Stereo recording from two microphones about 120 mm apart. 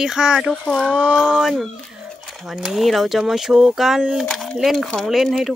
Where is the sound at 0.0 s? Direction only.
5° right (ahead or behind).